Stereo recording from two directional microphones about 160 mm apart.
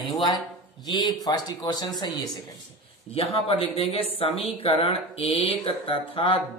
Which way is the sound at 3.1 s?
35° left (ahead or behind).